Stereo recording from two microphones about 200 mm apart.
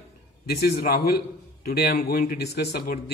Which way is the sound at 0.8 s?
50° left (ahead or behind).